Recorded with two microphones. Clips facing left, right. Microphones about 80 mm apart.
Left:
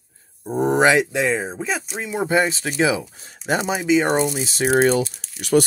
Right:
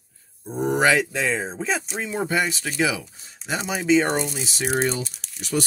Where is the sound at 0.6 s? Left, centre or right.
Left; by 2.3 s centre.